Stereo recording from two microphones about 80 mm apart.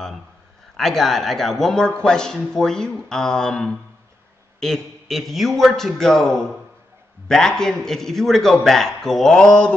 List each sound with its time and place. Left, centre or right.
0.7 s a man's voice: centre